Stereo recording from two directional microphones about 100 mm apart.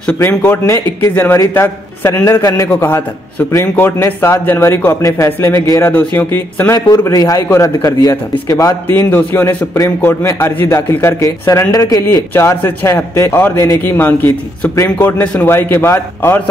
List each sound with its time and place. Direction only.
0.2 s a man's voice: 20° left (ahead or behind)
2.7 s a man's voice: 20° left (ahead or behind)
6.9 s a man's voice: 35° left (ahead or behind)
8.8 s a man's voice: 20° left (ahead or behind)